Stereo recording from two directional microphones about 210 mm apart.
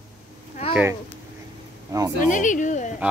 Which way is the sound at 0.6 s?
30° left (ahead or behind).